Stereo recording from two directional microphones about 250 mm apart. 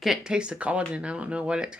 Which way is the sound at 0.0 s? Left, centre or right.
Centre.